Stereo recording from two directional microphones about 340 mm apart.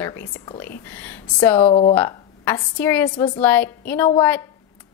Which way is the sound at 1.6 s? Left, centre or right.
Centre.